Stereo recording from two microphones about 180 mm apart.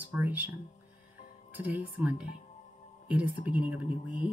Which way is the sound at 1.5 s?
10° right (ahead or behind).